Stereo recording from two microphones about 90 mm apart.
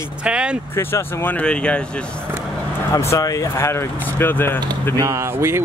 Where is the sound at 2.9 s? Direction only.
35° left (ahead or behind).